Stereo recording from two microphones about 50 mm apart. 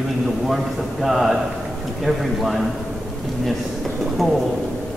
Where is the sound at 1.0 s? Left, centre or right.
Centre.